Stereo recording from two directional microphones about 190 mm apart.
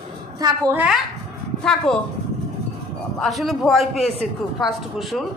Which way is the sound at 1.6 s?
5° left (ahead or behind).